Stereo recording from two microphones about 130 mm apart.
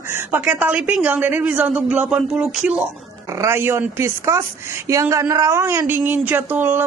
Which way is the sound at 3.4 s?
20° right (ahead or behind).